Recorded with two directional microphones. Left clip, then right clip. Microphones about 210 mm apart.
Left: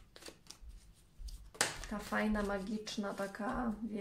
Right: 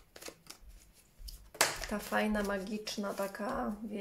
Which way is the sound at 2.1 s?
35° right (ahead or behind).